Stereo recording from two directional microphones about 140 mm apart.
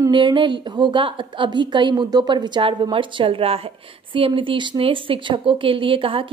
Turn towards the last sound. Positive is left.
turn(degrees=-40)  # may be behind; listen again after turning